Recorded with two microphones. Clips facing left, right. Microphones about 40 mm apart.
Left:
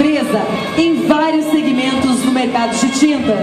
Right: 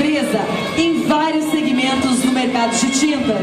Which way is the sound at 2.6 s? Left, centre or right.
Centre.